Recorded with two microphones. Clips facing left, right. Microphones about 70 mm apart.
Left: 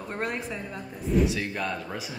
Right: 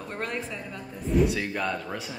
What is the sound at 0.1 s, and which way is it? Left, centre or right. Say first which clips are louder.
Speech: left 2 dB; centre.